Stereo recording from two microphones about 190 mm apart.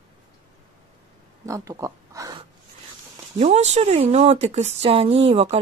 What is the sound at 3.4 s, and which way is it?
Speech, 35° right (ahead or behind).